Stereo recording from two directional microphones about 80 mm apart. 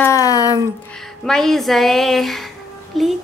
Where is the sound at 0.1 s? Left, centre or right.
Left.